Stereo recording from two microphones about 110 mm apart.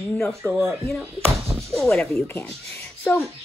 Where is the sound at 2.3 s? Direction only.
20° left (ahead or behind).